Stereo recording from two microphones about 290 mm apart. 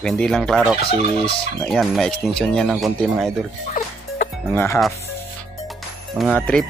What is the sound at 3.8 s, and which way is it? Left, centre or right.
Music, left.